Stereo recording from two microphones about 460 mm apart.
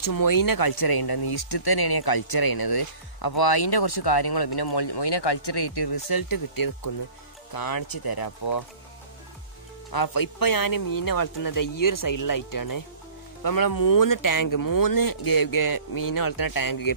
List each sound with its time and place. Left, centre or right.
0.0 s speech: left
9.8 s speech: left